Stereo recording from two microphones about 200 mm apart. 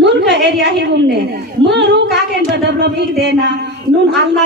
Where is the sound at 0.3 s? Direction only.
60° right (ahead or behind).